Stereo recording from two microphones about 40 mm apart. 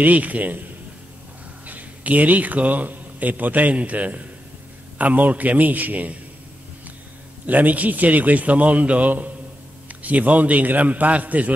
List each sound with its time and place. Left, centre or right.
0.0 s a man's voice: right
1.7 s a man's voice: right
7.4 s a man's voice: right